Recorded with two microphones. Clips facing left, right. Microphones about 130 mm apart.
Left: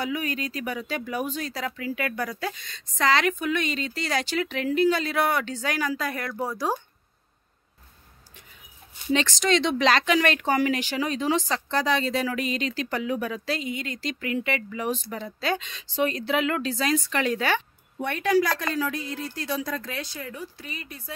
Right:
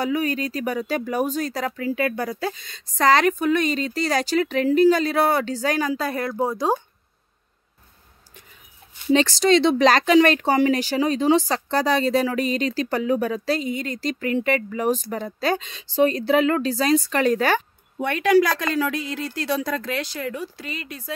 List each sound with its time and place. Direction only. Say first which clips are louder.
0.0 s speech: right 6 dB; 40° right (ahead or behind)
1.9 s speech: right 6 dB; 30° right (ahead or behind)
2.7 s speech: right 5 dB; 40° right (ahead or behind); by 6.8 s 20° right (ahead or behind)
9.1 s speech: right 6 dB; 35° right (ahead or behind)
17.9 s a woman's voice: right 5 dB; 90° right